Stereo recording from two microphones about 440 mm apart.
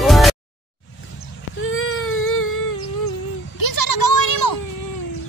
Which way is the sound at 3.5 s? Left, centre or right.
Left.